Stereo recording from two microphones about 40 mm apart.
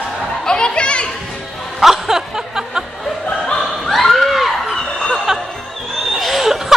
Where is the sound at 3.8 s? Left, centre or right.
Centre.